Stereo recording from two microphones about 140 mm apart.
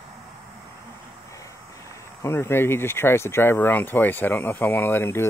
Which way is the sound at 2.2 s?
15° left (ahead or behind).